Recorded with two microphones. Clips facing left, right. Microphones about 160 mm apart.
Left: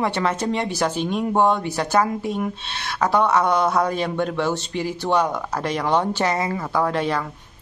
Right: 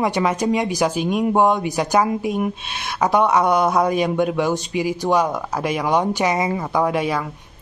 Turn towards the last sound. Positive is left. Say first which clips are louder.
# right 2 dB
turn(degrees=-10)  # may be behind; listen again after turning